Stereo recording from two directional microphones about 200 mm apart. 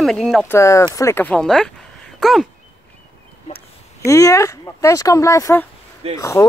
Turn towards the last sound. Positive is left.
turn(degrees=15)  # may be behind; listen again after turning